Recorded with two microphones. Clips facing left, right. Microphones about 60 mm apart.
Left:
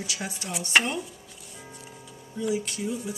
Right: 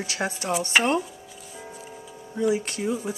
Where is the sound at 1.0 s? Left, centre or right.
Centre.